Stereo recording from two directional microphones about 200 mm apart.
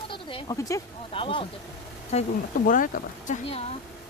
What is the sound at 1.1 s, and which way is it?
Speech, 25° left (ahead or behind).